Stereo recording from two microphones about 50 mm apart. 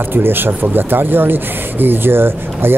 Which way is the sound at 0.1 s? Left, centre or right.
Right.